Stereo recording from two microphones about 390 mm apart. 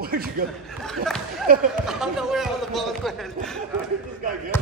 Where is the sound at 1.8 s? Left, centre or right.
Centre.